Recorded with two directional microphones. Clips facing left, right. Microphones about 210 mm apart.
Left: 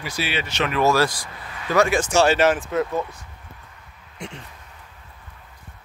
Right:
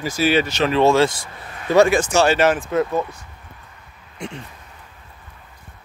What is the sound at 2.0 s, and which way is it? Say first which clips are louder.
Speech: right 1 dB; 55° right (ahead or behind).